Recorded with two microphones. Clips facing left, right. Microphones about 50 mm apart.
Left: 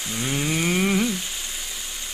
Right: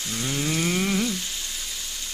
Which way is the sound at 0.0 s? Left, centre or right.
Left.